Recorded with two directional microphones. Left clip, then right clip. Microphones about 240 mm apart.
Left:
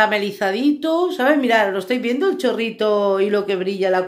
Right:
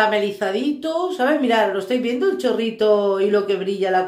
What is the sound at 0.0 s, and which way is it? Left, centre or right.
Speech, left.